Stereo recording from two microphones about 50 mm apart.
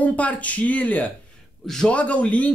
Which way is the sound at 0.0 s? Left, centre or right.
Left.